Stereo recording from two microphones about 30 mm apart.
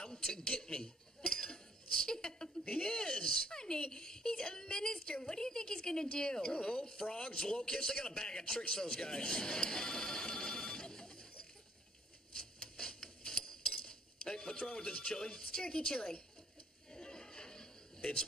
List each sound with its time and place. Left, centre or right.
0.0 s a sound: centre
0.4 s speech: left
1.3 s cutlery: left
2.7 s a man's voice: left
12.4 s cutlery: centre
13.7 s speech: left
16.9 s a sound: left